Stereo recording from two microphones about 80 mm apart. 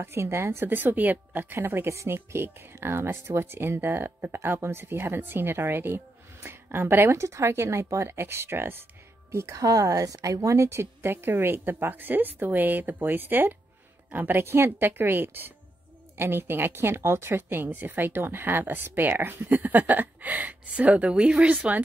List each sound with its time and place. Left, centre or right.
0.0 s speech: right; by 21.5 s centre